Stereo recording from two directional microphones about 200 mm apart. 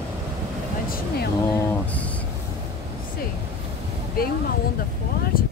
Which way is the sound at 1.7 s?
5° left (ahead or behind).